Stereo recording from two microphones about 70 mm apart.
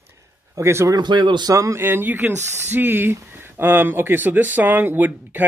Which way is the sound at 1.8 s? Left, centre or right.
Right.